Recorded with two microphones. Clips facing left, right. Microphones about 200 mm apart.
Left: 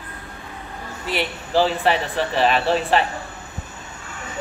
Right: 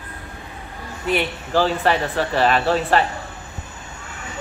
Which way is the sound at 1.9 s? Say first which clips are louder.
Right 1 dB; 40° right (ahead or behind).